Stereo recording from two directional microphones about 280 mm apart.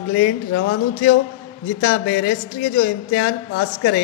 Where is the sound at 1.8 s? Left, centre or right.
Left.